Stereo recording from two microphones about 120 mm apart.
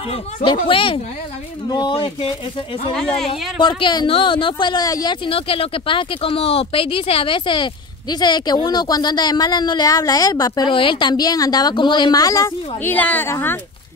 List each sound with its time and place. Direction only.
0.1 s speech: 45° left (ahead or behind)
2.9 s speech: 5° left (ahead or behind)
3.5 s speech: 40° left (ahead or behind)
12.8 s a woman's voice: 15° left (ahead or behind)